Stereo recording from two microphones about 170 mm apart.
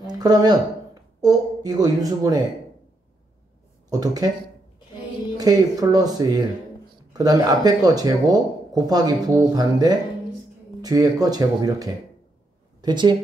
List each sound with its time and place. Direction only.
0.0 s speech: 25° right (ahead or behind)
3.9 s speech: 25° right (ahead or behind)
5.4 s speech: 25° right (ahead or behind)